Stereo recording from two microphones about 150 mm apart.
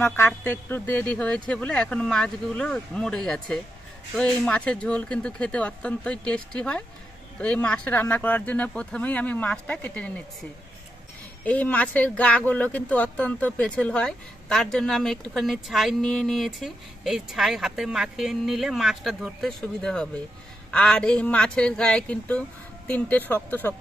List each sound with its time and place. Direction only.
0.0 s speech: 15° left (ahead or behind)
11.4 s speech: 10° left (ahead or behind)